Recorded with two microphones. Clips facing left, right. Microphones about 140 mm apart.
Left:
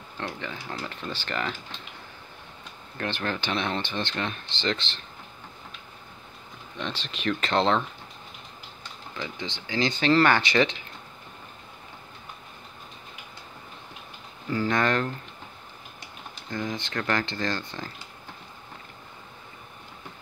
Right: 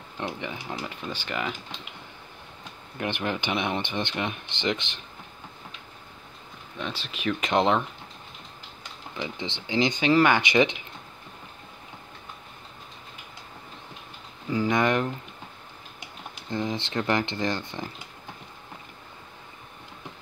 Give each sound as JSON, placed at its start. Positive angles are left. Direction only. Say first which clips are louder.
{"t": 0.2, "sound": "speech", "louder": "right 2 dB", "side_deg": -15}
{"t": 3.0, "sound": "speech", "louder": "right 1 dB", "side_deg": -15}
{"t": 6.8, "sound": "speech", "louder": "even", "side_deg": -10}
{"t": 9.1, "sound": "speech", "louder": "right 2 dB", "side_deg": -20}
{"t": 14.5, "sound": "speech", "louder": "right 1 dB", "side_deg": -15}
{"t": 16.4, "sound": "speech", "louder": "right 2 dB", "side_deg": -25}